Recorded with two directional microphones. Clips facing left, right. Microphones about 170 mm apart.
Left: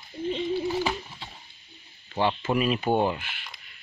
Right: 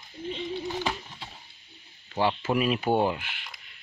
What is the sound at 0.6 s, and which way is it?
Bird, 5° left (ahead or behind).